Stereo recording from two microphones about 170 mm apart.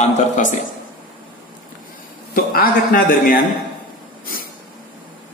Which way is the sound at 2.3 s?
55° left (ahead or behind).